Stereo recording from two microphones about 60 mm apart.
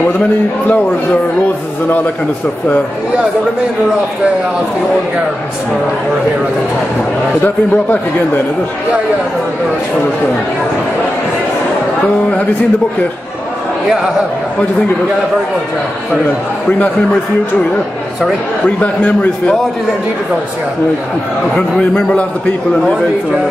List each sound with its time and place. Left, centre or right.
7.4 s a man's voice: left
18.8 s a man's voice: left